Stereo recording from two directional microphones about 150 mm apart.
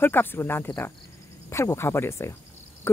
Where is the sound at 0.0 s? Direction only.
15° left (ahead or behind).